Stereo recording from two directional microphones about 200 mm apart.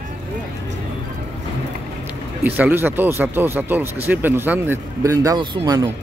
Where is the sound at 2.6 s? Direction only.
10° right (ahead or behind).